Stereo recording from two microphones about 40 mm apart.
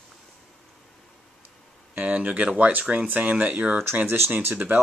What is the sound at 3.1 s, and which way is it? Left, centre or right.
Speech, right.